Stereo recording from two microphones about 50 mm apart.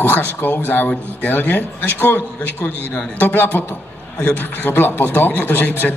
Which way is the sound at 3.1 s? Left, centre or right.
Left.